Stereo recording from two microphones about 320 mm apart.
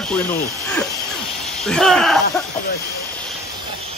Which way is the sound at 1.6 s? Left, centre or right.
Centre.